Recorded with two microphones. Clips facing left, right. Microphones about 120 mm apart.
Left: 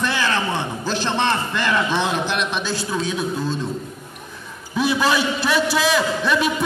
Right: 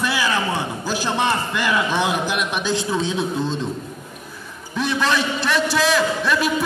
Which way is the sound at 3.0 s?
25° right (ahead or behind).